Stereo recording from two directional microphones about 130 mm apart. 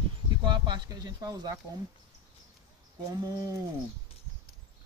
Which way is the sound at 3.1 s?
25° right (ahead or behind).